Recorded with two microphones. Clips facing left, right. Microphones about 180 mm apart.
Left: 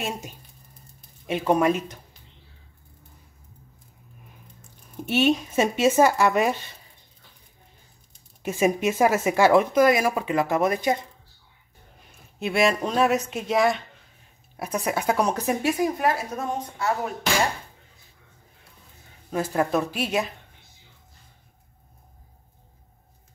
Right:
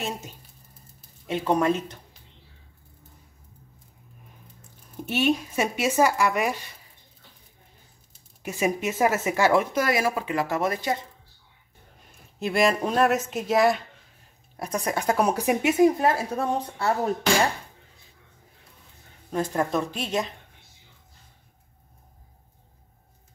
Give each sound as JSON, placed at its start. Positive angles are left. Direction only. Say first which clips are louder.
{"t": 1.2, "sound": "speech", "louder": "left 2 dB", "side_deg": 15}
{"t": 5.0, "sound": "speech", "louder": "left 2 dB", "side_deg": 20}
{"t": 8.4, "sound": "speech", "louder": "left 4 dB", "side_deg": 20}
{"t": 12.4, "sound": "speech", "louder": "even", "side_deg": 0}
{"t": 15.2, "sound": "a woman's voice", "louder": "right 1 dB", "side_deg": -10}
{"t": 19.3, "sound": "speech", "louder": "left 2 dB", "side_deg": 5}